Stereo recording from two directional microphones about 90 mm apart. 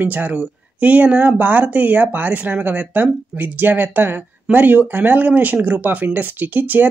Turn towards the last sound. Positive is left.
turn(degrees=-20)  # may be behind; listen again after turning